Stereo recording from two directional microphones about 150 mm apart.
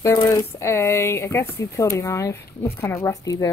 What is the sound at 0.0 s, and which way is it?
Speech, 20° left (ahead or behind).